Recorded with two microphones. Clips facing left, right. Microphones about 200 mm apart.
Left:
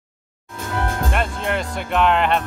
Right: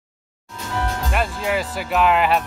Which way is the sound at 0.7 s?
55° left (ahead or behind).